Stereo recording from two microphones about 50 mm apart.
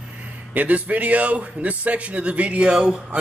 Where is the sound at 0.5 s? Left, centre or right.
Right.